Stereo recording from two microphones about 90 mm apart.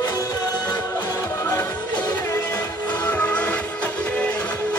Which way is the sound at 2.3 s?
30° left (ahead or behind).